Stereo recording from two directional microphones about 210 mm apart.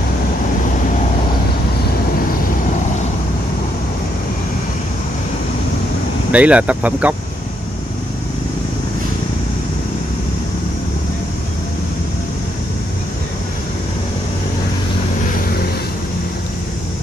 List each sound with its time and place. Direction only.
6.3 s speech: 5° right (ahead or behind)